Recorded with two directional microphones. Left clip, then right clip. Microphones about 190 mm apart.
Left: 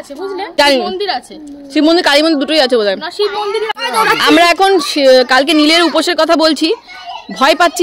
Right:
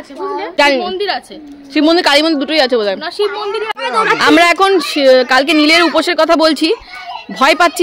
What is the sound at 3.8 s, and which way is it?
Speech, 40° left (ahead or behind).